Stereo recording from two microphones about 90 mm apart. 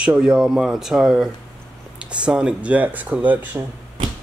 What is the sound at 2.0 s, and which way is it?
Speech, 10° right (ahead or behind).